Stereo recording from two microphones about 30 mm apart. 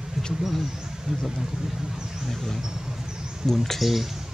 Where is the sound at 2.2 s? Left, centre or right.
Centre.